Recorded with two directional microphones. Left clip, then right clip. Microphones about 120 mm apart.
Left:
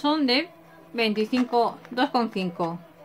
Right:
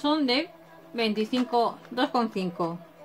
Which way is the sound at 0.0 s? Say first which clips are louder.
Left 2 dB; 35° left (ahead or behind).